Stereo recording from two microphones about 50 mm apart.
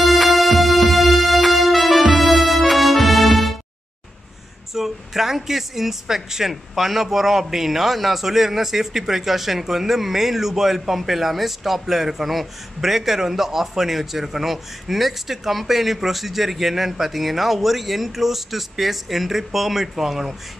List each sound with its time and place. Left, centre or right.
0.0 s music: centre
4.7 s a woman's voice: centre